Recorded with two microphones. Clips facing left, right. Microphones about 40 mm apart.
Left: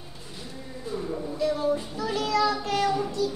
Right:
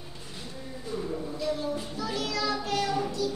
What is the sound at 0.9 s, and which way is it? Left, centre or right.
A child's voice, centre.